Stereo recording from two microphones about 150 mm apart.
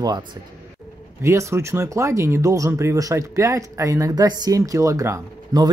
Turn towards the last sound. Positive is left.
turn(degrees=-25)  # may be behind; listen again after turning